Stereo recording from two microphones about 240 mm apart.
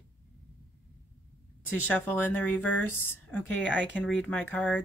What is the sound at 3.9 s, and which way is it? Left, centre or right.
Speech, centre.